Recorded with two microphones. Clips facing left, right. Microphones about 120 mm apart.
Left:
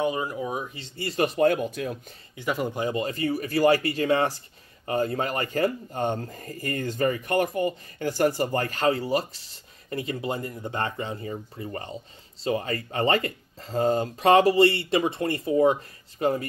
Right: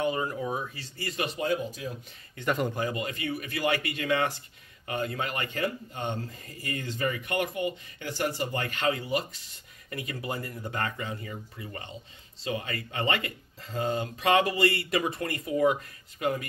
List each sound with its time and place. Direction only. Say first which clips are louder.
0.0 s speech: left 2 dB; 15° left (ahead or behind)
0.7 s speech: left 4 dB; 25° left (ahead or behind)
1.1 s speech: left 8 dB; 45° left (ahead or behind); by 2.0 s 65° left (ahead or behind)
2.3 s speech: left 1 dB; 5° left (ahead or behind)
2.7 s speech: left 4 dB; 25° left (ahead or behind)